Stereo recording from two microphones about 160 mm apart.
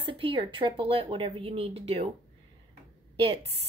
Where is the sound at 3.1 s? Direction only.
35° right (ahead or behind).